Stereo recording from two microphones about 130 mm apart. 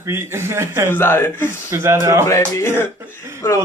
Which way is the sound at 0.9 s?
15° left (ahead or behind).